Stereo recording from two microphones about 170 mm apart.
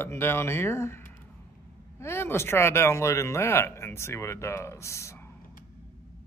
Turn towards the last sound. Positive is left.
turn(degrees=15)  # may be behind; listen again after turning